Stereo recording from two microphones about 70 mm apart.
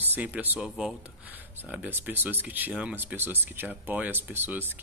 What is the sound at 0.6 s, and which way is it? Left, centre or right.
Speech, centre.